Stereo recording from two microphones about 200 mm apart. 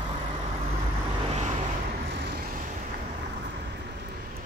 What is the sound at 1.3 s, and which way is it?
Vehicle, 35° right (ahead or behind).